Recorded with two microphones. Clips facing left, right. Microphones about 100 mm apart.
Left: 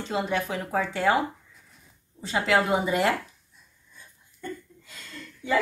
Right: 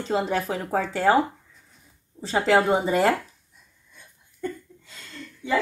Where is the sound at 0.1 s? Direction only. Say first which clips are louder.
Right 3 dB; 40° right (ahead or behind).